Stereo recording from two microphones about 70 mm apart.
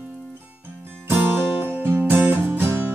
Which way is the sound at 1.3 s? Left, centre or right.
Right.